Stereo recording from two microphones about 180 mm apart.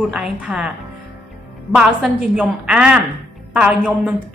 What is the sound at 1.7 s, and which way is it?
A woman's voice, 5° right (ahead or behind).